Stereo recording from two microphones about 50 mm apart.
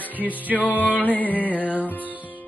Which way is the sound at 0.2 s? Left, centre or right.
Right.